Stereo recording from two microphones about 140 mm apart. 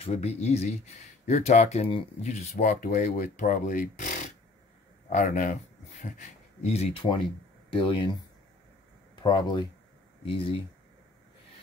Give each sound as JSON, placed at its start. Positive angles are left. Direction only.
{"t": 0.0, "sound": "speech", "side_deg": 50}
{"t": 2.5, "sound": "speech", "side_deg": 70}
{"t": 5.1, "sound": "speech", "side_deg": 60}
{"t": 6.1, "sound": "speech", "side_deg": 50}